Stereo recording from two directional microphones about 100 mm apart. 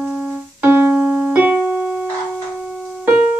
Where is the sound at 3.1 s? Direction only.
15° right (ahead or behind).